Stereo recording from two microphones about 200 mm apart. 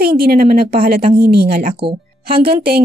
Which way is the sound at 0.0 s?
50° right (ahead or behind).